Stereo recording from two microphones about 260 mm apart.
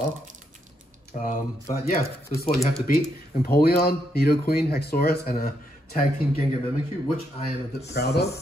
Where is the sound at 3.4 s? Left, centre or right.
Left.